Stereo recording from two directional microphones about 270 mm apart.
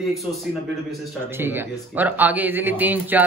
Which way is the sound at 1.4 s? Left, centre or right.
Centre.